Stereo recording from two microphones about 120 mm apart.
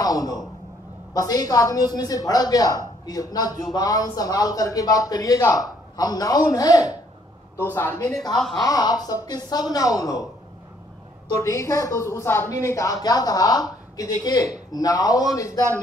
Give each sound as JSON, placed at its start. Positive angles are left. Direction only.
{"t": 0.0, "sound": "a woman's voice", "side_deg": 30}
{"t": 8.4, "sound": "speech", "side_deg": 5}
{"t": 8.6, "sound": "a woman's voice", "side_deg": 30}
{"t": 11.4, "sound": "a woman's voice", "side_deg": 25}